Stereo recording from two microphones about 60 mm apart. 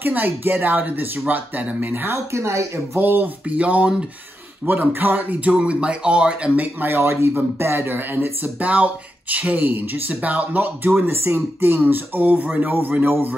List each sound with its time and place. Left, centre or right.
0.0 s speech: right
2.0 s speech: right
3.0 s speech: right
4.6 s speech: right; by 6.5 s centre
6.5 s speech: right
7.0 s speech: right
11.0 s speech: right